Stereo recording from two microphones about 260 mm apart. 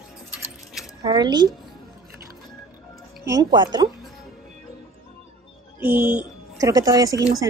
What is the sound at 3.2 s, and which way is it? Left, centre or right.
Speech, centre.